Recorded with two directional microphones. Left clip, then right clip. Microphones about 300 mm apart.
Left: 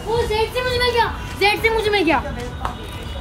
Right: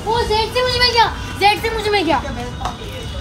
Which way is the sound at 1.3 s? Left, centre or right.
Centre.